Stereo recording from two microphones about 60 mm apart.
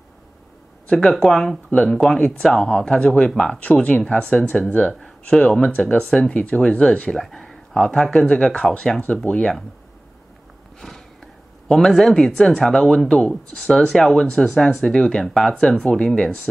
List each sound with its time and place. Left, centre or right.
1.2 s speech: centre
9.0 s speech: left
10.8 s a sound: centre
11.7 s speech: centre